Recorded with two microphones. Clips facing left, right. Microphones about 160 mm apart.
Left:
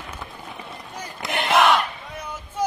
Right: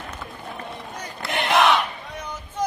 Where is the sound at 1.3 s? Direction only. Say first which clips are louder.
Left 1 dB; centre (ahead or behind).